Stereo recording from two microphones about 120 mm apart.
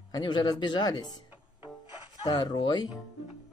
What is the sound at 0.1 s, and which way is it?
Speech, 35° left (ahead or behind).